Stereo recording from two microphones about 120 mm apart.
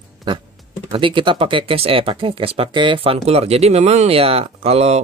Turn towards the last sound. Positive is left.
turn(degrees=-60)  # may be behind; listen again after turning